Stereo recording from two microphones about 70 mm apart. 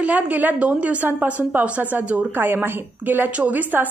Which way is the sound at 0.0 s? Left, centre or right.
Right.